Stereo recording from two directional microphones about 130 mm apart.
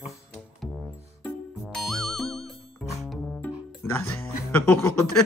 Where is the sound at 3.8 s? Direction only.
20° left (ahead or behind).